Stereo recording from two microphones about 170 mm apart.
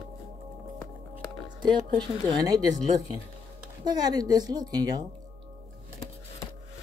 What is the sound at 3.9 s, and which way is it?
A woman's voice, 25° right (ahead or behind).